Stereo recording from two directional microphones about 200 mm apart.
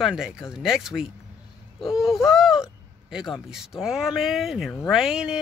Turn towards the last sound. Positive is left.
turn(degrees=-5)  # may be behind; listen again after turning